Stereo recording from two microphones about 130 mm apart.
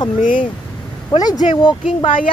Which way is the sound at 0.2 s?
90° left.